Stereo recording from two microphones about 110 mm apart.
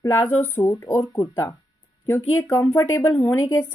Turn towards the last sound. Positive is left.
turn(degrees=25)  # may be behind; listen again after turning